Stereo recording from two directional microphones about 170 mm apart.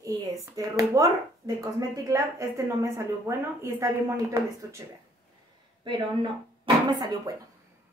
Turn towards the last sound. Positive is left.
turn(degrees=-25)  # may be behind; listen again after turning